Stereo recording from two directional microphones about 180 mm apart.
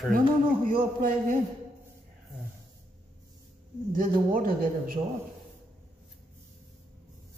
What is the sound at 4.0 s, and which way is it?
A man's voice, 50° right (ahead or behind).